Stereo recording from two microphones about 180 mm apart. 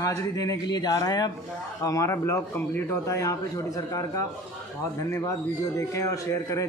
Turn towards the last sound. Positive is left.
turn(degrees=15)  # may be behind; listen again after turning